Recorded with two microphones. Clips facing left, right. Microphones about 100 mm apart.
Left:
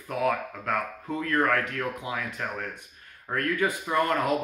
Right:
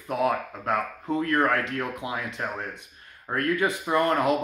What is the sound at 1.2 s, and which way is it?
Speech, 30° right (ahead or behind).